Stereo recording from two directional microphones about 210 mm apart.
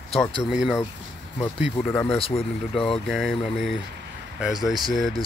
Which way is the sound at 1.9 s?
10° left (ahead or behind).